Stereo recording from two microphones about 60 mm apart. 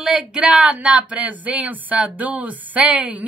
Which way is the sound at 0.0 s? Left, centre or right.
Centre.